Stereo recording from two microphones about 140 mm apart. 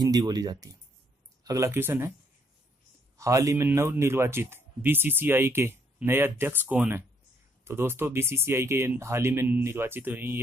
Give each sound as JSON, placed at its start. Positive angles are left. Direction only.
{"t": 0.0, "sound": "speech", "side_deg": -25}
{"t": 3.2, "sound": "speech", "side_deg": -20}